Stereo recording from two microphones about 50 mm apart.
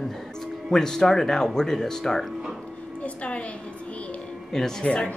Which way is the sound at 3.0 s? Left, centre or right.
Left.